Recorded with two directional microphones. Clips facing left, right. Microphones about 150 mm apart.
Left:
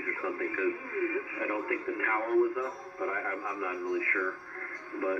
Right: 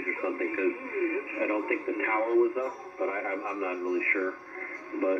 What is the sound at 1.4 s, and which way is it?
Radio, 15° right (ahead or behind).